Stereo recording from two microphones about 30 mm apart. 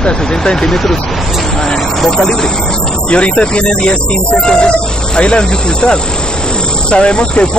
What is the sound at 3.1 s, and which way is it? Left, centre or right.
Speech, left.